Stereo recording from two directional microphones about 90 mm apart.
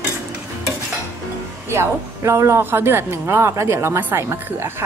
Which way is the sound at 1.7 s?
35° right (ahead or behind).